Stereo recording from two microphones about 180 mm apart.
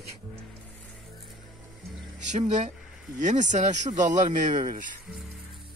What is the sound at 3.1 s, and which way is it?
Speech, 45° right (ahead or behind).